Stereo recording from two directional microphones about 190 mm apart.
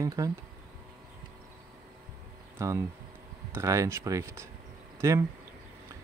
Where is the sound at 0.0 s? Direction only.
15° right (ahead or behind).